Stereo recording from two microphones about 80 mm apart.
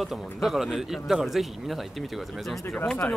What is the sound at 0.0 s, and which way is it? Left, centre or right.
Speech, centre.